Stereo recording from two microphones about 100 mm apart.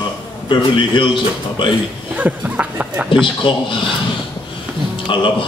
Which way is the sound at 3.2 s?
55° left (ahead or behind).